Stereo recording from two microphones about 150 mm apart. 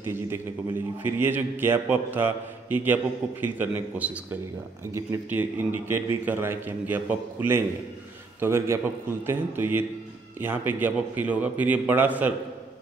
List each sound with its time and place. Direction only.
0.0 s a man's voice: 15° right (ahead or behind)